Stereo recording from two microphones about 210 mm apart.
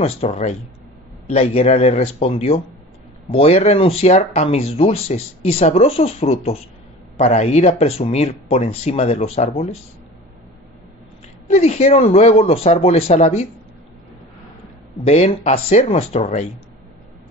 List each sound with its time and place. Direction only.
0.0 s speech: 30° left (ahead or behind)
11.4 s speech: 30° left (ahead or behind)
15.0 s speech: 30° left (ahead or behind)